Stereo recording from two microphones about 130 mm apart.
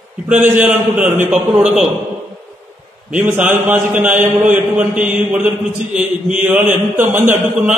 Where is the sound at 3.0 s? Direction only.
10° right (ahead or behind).